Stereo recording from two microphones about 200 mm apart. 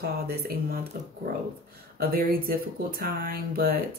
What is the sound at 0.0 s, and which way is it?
Speech, 50° right (ahead or behind).